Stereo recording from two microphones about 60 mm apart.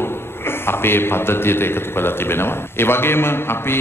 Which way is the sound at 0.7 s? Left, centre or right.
Left.